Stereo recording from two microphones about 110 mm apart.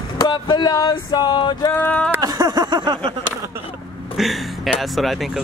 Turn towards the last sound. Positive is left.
turn(degrees=0)  # may be behind; listen again after turning